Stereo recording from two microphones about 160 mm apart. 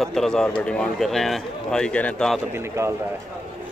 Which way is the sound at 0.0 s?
Centre (ahead or behind).